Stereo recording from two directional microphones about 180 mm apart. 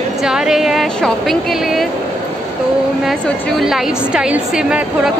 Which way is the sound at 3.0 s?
Centre (ahead or behind).